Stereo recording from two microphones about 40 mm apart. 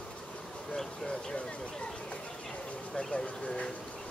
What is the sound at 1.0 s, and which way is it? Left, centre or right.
Speech, left.